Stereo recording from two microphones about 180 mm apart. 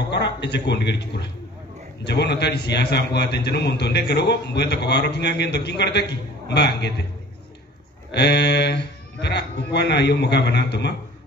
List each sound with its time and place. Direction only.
0.1 s a man's voice: 70° left (ahead or behind)
8.1 s a man's voice: 70° left (ahead or behind)